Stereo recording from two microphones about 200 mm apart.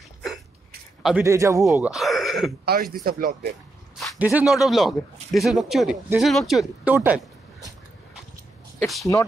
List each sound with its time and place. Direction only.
1.2 s speech: 15° right (ahead or behind)
1.6 s speech: centre (ahead or behind)
2.6 s speech: 50° right (ahead or behind)
4.0 s a man's voice: 5° right (ahead or behind)
8.7 s a sound: centre (ahead or behind)